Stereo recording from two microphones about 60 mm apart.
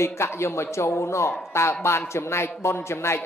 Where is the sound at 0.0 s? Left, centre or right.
Left.